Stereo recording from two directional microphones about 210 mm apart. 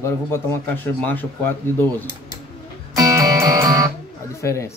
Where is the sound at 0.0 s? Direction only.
15° left (ahead or behind).